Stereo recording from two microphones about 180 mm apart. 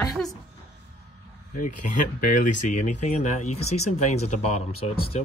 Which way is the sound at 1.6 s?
50° left (ahead or behind).